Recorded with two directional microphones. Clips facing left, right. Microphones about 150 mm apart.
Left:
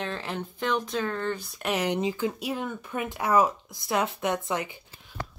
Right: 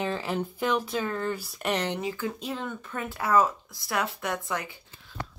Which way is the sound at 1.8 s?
15° left (ahead or behind).